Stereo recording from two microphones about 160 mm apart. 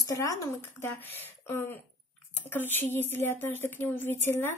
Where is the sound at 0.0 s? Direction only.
20° left (ahead or behind).